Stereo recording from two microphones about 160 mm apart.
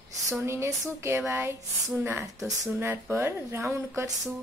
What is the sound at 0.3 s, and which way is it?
Speech, 15° right (ahead or behind).